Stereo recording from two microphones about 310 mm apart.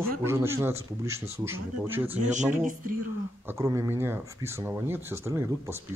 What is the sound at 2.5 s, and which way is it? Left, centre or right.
Music, right.